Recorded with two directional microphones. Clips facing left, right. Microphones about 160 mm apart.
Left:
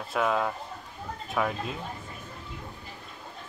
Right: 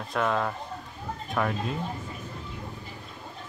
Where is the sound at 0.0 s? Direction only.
5° left (ahead or behind).